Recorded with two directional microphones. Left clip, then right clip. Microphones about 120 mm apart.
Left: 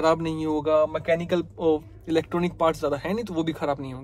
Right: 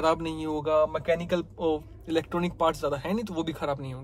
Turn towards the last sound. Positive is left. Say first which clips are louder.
# left 4 dB
turn(degrees=-15)  # may be behind; listen again after turning